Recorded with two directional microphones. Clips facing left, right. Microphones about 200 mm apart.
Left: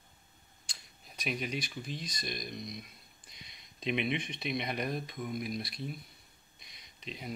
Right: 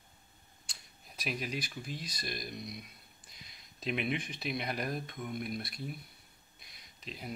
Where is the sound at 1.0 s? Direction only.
Centre (ahead or behind).